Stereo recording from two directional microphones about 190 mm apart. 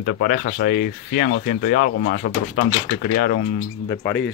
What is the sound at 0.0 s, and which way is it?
Speech, 55° left (ahead or behind).